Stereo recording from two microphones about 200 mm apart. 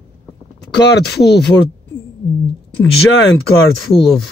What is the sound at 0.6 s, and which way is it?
Speech, 55° left (ahead or behind).